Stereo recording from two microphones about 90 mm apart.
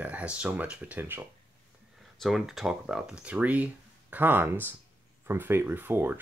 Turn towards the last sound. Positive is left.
turn(degrees=-20)  # may be behind; listen again after turning